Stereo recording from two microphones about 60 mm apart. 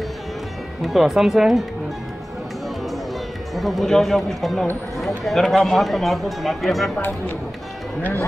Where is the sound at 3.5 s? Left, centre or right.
Centre.